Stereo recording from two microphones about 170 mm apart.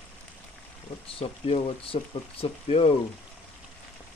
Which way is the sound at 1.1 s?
35° left (ahead or behind).